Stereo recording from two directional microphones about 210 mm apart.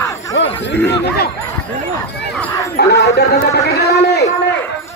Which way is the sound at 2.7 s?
50° left (ahead or behind).